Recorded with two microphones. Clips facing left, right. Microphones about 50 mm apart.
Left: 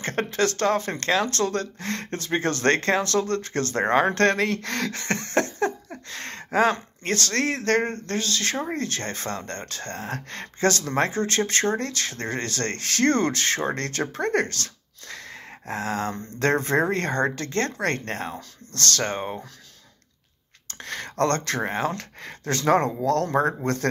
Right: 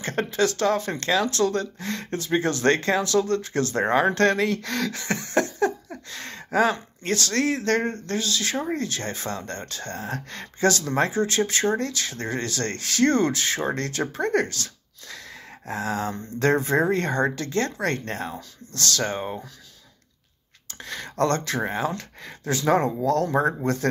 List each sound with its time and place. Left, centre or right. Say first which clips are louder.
0.0 s speech: right 1 dB; left
20.6 s a sound: left 1 dB; left
21.6 s speech: even; left